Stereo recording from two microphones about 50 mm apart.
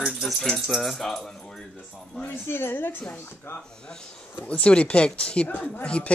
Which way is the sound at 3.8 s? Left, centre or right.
Centre.